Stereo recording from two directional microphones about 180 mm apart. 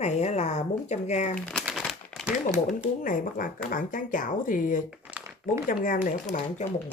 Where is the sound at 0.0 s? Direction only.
40° left (ahead or behind).